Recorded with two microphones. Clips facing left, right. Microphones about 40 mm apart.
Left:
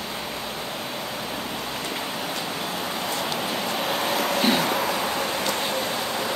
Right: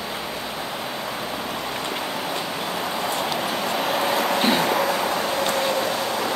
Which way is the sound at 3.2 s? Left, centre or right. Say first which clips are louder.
Right 2 dB; centre.